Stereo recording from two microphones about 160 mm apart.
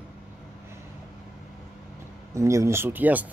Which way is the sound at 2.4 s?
20° right (ahead or behind).